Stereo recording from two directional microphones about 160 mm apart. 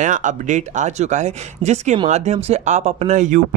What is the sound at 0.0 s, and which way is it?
Speech, 50° right (ahead or behind).